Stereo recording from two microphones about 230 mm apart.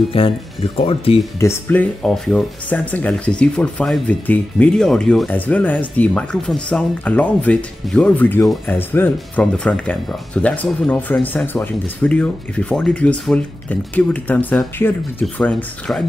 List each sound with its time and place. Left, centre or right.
0.2 s speech: left
1.4 s speech: centre